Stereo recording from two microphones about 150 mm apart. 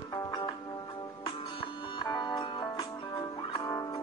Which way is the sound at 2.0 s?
25° left (ahead or behind).